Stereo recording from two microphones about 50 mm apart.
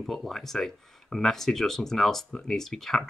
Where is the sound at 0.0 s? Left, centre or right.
Centre.